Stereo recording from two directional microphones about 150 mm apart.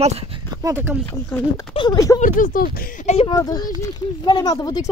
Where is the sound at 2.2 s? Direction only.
65° left (ahead or behind).